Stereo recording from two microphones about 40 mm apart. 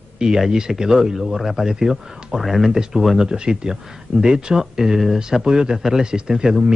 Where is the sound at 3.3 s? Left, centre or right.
Right.